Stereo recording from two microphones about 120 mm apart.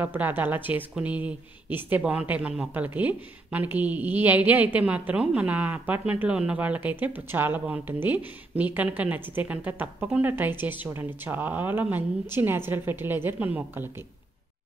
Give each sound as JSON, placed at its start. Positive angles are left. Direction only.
{"t": 0.0, "sound": "speech", "side_deg": -15}